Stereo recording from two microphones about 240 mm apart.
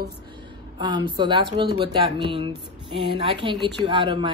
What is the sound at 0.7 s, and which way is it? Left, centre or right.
Speech, centre.